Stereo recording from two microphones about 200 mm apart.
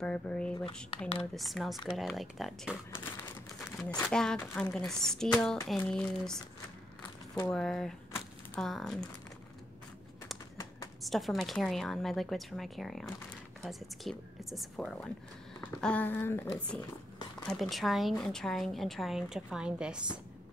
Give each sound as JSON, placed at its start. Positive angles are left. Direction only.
{"t": 0.0, "sound": "a woman's voice", "side_deg": 5}
{"t": 0.8, "sound": "speech", "side_deg": 30}
{"t": 1.3, "sound": "a woman's voice", "side_deg": 0}
{"t": 3.9, "sound": "a woman's voice", "side_deg": 5}
{"t": 11.0, "sound": "a woman's voice", "side_deg": 0}